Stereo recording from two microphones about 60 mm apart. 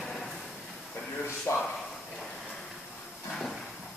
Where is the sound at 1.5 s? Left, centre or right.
Left.